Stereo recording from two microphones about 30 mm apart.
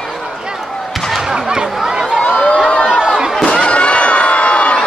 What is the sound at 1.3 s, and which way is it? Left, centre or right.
Chatter, right.